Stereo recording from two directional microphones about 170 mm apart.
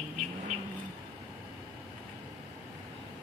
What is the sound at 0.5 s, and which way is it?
Vehicle, 40° right (ahead or behind).